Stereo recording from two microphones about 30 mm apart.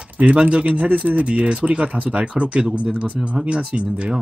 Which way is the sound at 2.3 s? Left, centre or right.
Right.